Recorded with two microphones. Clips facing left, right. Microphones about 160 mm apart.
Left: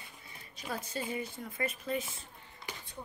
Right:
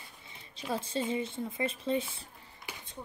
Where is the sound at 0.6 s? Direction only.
25° right (ahead or behind).